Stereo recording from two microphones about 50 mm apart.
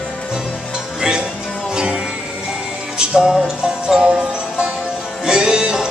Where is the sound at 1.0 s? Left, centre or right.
Centre.